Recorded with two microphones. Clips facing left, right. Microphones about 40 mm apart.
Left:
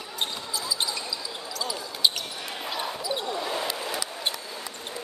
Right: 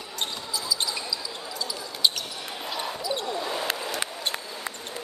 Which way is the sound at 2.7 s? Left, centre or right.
Centre.